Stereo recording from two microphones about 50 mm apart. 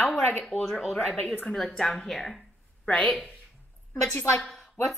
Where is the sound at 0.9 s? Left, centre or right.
Left.